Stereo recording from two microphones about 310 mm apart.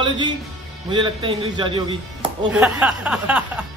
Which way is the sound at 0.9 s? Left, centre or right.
Centre.